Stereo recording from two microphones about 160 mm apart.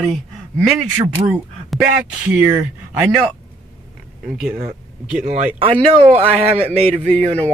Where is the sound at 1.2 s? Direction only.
5° right (ahead or behind).